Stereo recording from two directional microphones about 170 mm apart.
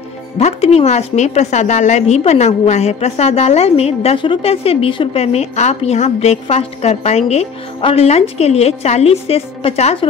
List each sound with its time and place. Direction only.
0.4 s a woman's voice: 40° left (ahead or behind)